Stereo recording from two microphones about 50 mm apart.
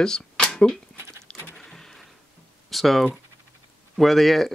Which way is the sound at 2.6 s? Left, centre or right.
Centre.